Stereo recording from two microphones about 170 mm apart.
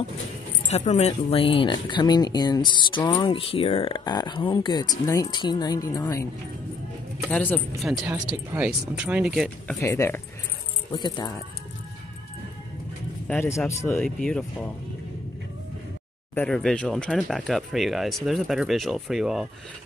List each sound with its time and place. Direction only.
0.7 s speech: 40° left (ahead or behind); by 6.2 s 20° left (ahead or behind)
7.2 s speech: 5° left (ahead or behind)
7.8 s speech: 5° right (ahead or behind)
9.8 s speech: 15° left (ahead or behind)
10.9 s speech: 25° left (ahead or behind)
13.7 s speech: 15° left (ahead or behind)
16.3 s speech: 5° left (ahead or behind)